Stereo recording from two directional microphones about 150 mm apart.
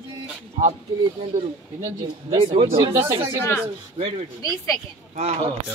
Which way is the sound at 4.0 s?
45° right (ahead or behind).